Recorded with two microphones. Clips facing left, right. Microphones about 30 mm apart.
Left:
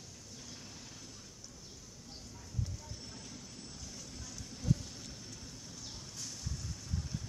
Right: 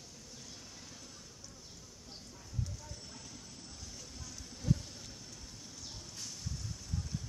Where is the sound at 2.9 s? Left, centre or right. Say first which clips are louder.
Left 1 dB; centre.